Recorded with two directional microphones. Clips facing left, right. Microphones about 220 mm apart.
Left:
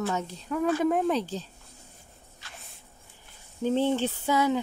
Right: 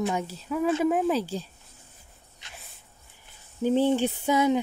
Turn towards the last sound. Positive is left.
turn(degrees=-20)  # may be behind; listen again after turning